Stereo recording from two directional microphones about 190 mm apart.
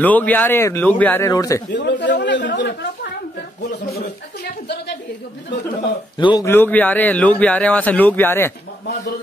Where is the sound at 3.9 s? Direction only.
50° left (ahead or behind).